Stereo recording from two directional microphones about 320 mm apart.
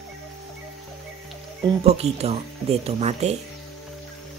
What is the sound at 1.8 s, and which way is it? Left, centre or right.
Speech, centre.